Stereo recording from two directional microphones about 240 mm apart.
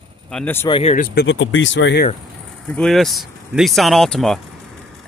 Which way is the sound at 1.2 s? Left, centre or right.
Left.